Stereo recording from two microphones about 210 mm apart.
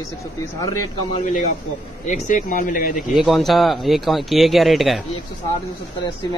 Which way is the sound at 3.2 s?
Centre (ahead or behind).